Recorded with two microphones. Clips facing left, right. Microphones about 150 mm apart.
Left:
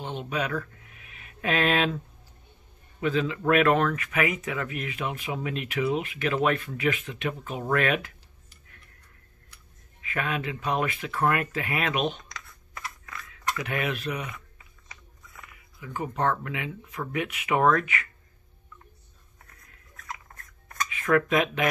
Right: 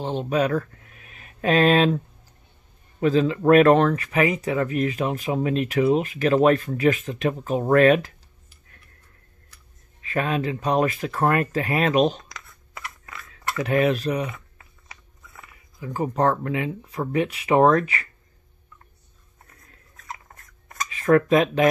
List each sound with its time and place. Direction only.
0.0 s speech: 35° right (ahead or behind)
3.0 s speech: 35° right (ahead or behind)
10.0 s speech: 35° right (ahead or behind)
13.0 s a sound: 30° right (ahead or behind)
15.8 s speech: 35° right (ahead or behind)
20.9 s speech: 35° right (ahead or behind)